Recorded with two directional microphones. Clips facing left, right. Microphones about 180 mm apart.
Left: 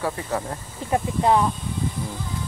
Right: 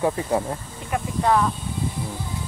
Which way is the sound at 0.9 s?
20° left (ahead or behind).